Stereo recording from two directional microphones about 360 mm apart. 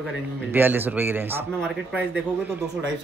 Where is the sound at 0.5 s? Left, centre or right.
Centre.